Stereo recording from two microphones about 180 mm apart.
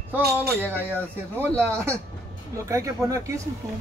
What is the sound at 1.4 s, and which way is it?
Speech, 10° right (ahead or behind).